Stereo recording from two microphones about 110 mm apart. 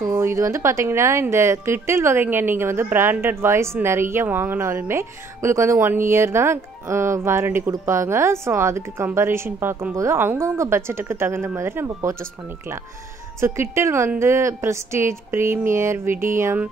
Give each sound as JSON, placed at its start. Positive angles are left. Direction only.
{"t": 0.0, "sound": "speech", "side_deg": -25}